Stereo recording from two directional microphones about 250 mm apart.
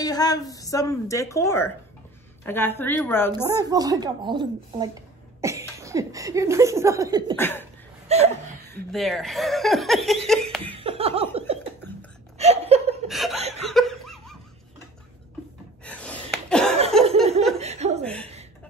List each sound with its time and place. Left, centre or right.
0.0 s a woman's voice: centre
3.3 s a woman's voice: centre
7.3 s a woman's voice: centre
8.1 s laughter: right
8.9 s speech: centre
10.7 s laughter: right
12.4 s chuckle: right
13.1 s chuckle: centre
13.7 s laughter: centre
15.8 s gasp: centre
16.9 s laughter: centre
17.6 s chuckle: right
18.0 s chuckle: centre